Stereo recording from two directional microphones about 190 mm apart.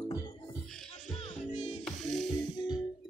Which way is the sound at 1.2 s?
30° left (ahead or behind).